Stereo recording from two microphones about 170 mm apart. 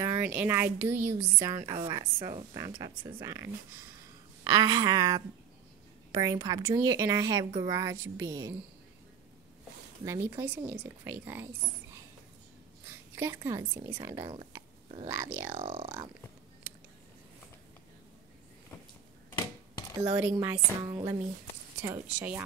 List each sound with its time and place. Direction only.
0.0 s a woman's voice: 15° right (ahead or behind)
10.0 s a woman's voice: 15° right (ahead or behind)
13.1 s a woman's voice: 15° right (ahead or behind)
14.2 s speech: 35° right (ahead or behind)
15.0 s a woman's voice: 10° right (ahead or behind)
15.5 s speech: 35° right (ahead or behind)
20.2 s a woman's voice: 10° right (ahead or behind)
20.8 s a woman's voice: 20° right (ahead or behind)